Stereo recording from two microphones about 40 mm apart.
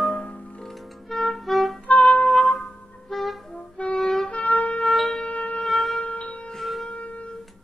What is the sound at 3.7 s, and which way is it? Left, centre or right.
Music, left.